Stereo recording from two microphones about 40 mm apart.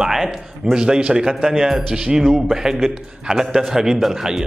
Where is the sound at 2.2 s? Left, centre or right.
Centre.